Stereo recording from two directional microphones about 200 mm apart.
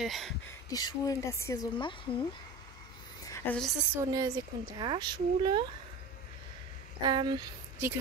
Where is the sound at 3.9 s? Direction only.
15° right (ahead or behind).